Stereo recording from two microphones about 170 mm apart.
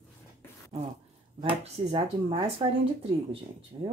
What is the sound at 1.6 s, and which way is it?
Speech, 35° right (ahead or behind).